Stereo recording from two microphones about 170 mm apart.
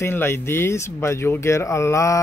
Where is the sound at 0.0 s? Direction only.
15° left (ahead or behind).